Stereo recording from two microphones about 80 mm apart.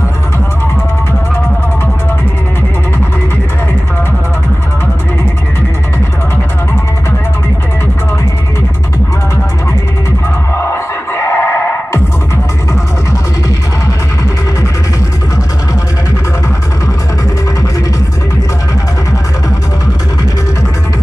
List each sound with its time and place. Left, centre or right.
10.7 s music: left